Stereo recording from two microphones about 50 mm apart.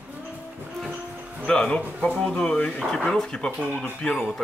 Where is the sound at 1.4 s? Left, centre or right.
Centre.